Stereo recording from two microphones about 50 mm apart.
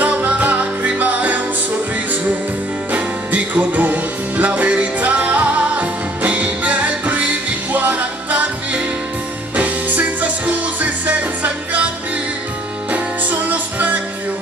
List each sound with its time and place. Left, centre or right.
0.0 s music: right
2.9 s music: right
12.9 s music: right